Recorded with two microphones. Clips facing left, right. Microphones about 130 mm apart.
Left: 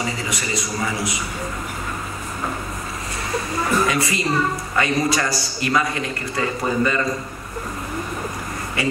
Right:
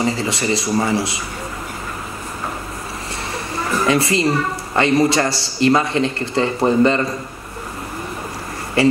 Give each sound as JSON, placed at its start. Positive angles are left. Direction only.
{"t": 0.0, "sound": "a man's voice", "side_deg": -30}
{"t": 3.8, "sound": "a woman's voice", "side_deg": -30}